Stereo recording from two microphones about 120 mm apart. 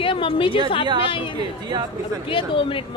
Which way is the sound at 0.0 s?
45° left (ahead or behind).